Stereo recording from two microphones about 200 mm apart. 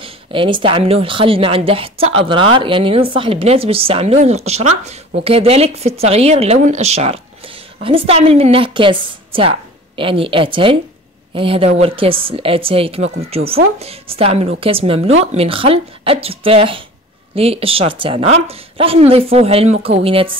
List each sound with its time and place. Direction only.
0.0 s speech: 25° right (ahead or behind)